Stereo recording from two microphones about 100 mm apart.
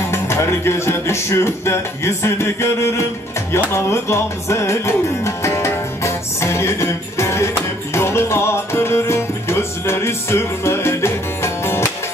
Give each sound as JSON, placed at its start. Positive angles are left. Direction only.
{"t": 0.0, "sound": "music", "side_deg": 25}